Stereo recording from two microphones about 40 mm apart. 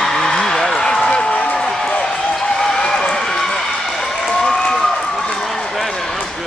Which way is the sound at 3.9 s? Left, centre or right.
Centre.